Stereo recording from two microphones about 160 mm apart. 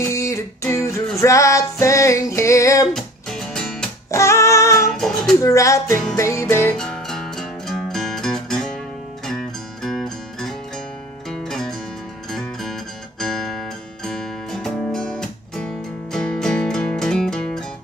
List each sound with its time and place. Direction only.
0.0 s music: 20° left (ahead or behind)
2.9 s music: centre (ahead or behind)
4.1 s music: 20° left (ahead or behind)
4.9 s child singing: 5° left (ahead or behind)
5.4 s music: 20° left (ahead or behind)
6.8 s music: 5° left (ahead or behind)